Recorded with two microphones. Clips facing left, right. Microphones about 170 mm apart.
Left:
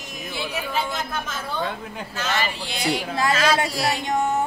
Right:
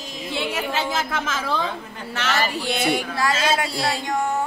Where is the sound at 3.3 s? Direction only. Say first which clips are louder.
Left 2 dB; 25° right (ahead or behind).